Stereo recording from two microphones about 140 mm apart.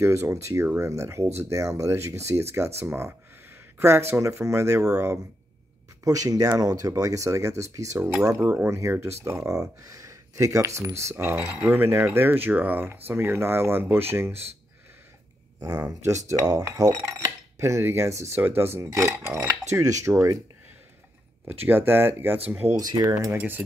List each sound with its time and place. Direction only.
0.0 s speech: 20° right (ahead or behind)
2.8 s coin: 20° right (ahead or behind)
4.1 s speech: 20° right (ahead or behind)
4.8 s coin: 15° right (ahead or behind)
6.0 s speech: 25° right (ahead or behind)
9.8 s coin: 25° right (ahead or behind)
15.6 s speech: 25° right (ahead or behind)
17.6 s coin: 20° right (ahead or behind)
19.7 s speech: 20° right (ahead or behind)
21.6 s coin: 15° right (ahead or behind)
22.8 s speech: 25° right (ahead or behind)
23.1 s coin: 15° right (ahead or behind)